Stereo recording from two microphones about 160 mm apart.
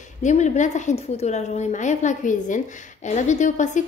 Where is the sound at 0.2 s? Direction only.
50° left (ahead or behind).